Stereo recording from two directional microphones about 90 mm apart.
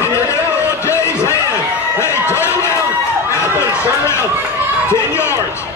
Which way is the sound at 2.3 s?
30° left (ahead or behind).